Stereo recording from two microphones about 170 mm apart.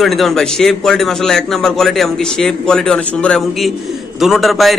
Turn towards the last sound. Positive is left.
turn(degrees=0)  # may be behind; listen again after turning